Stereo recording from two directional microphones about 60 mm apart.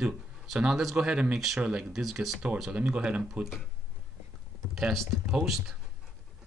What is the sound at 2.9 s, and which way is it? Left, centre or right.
Speech, centre.